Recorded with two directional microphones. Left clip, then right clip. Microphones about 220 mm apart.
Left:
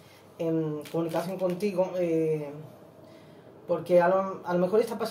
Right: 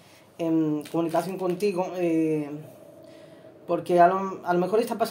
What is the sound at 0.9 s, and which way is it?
A man's voice, 50° right (ahead or behind).